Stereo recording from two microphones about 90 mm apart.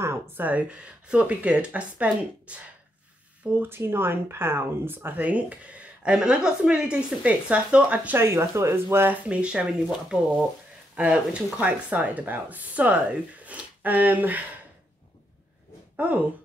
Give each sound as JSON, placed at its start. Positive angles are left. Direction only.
{"t": 0.0, "sound": "speech", "side_deg": -25}
{"t": 8.2, "sound": "speech", "side_deg": -30}